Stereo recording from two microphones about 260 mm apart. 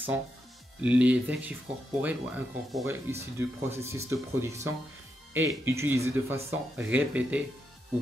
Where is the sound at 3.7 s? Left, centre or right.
Centre.